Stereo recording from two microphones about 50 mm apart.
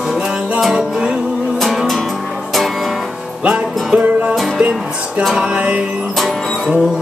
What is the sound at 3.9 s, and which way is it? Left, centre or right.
Music, right.